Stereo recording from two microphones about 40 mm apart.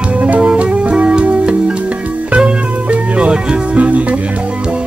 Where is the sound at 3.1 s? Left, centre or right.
Right.